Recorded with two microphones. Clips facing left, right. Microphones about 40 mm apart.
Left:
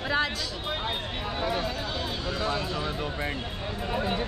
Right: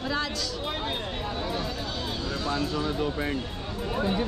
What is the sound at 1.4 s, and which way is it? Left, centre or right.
Speech, left.